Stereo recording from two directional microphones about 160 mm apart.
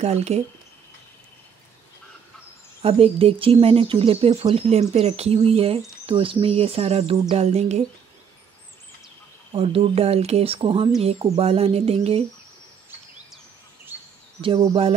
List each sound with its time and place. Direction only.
0.0 s speech: 45° right (ahead or behind)
2.8 s speech: 35° right (ahead or behind)
9.5 s speech: 35° right (ahead or behind)